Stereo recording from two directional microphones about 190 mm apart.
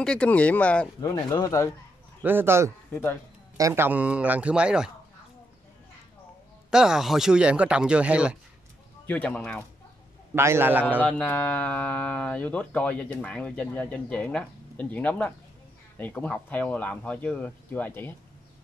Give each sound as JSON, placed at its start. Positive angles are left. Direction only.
{"t": 0.0, "sound": "speech", "side_deg": 5}
{"t": 1.0, "sound": "speech", "side_deg": 20}
{"t": 2.2, "sound": "a man's voice", "side_deg": -10}
{"t": 6.7, "sound": "speech", "side_deg": -5}
{"t": 9.0, "sound": "speech", "side_deg": 5}
{"t": 10.3, "sound": "a man's voice", "side_deg": -15}
{"t": 11.0, "sound": "speech", "side_deg": 5}